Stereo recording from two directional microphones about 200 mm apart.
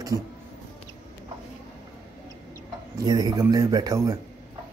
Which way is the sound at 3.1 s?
20° right (ahead or behind).